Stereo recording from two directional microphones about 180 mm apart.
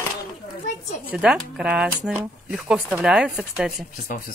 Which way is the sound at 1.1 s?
5° right (ahead or behind).